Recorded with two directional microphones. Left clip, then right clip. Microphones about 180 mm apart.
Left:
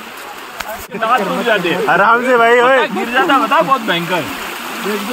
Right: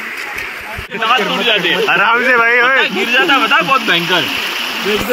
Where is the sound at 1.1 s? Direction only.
60° left (ahead or behind).